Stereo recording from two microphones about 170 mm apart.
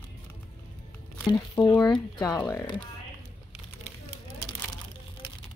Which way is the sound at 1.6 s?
25° left (ahead or behind).